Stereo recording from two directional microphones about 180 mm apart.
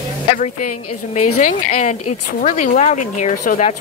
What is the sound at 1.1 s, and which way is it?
Speech, 45° left (ahead or behind).